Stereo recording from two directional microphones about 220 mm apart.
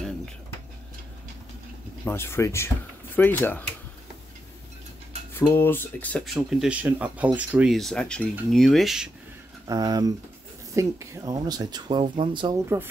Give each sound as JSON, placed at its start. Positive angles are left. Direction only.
{"t": 2.0, "sound": "speech", "side_deg": 10}
{"t": 5.3, "sound": "speech", "side_deg": 10}
{"t": 9.7, "sound": "speech", "side_deg": -15}